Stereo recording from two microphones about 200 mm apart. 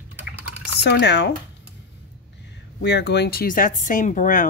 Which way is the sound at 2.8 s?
55° left (ahead or behind).